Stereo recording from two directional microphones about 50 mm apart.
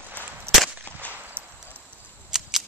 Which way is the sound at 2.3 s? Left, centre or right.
Centre.